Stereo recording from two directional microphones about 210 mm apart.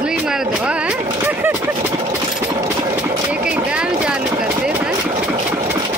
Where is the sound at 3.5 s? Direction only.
5° right (ahead or behind).